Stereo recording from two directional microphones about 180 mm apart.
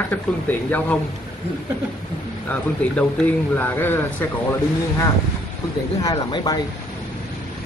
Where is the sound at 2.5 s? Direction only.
10° left (ahead or behind).